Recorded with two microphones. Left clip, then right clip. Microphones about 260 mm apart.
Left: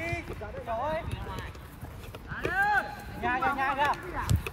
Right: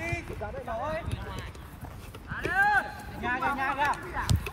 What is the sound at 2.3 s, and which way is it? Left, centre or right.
Clip-clop, right.